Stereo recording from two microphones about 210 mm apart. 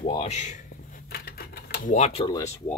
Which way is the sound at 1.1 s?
45° left (ahead or behind).